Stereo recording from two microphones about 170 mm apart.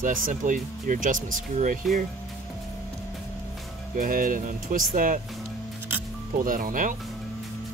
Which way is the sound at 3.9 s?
55° right (ahead or behind).